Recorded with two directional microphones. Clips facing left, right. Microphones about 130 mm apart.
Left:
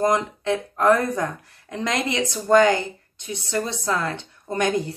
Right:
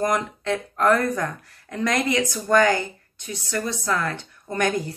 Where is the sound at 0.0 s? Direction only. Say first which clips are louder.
Left 2 dB; 20° left (ahead or behind).